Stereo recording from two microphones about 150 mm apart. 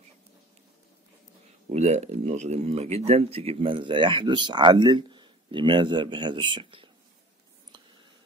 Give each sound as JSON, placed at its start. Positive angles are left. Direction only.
{"t": 1.7, "sound": "speech", "side_deg": -50}